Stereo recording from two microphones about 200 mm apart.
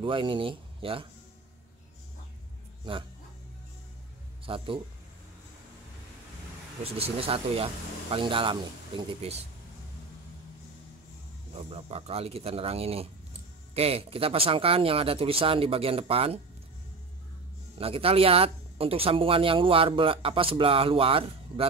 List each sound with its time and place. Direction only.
0.0 s speech: 25° right (ahead or behind)
2.8 s speech: 25° right (ahead or behind)
4.5 s speech: 25° right (ahead or behind)
6.8 s speech: 30° right (ahead or behind)
11.5 s speech: 30° right (ahead or behind)
17.7 s speech: 30° right (ahead or behind)